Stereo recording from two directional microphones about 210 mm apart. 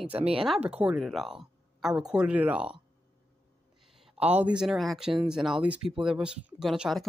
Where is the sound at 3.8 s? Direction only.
Centre (ahead or behind).